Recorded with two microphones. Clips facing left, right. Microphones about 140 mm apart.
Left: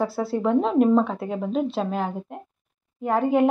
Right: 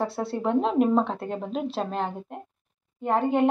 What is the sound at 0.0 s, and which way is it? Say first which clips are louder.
Speech: left 3 dB; centre (ahead or behind).